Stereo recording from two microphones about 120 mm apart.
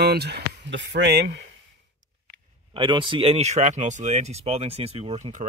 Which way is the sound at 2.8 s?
40° right (ahead or behind).